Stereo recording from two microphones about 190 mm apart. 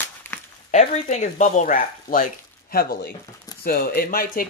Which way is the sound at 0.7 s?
40° left (ahead or behind).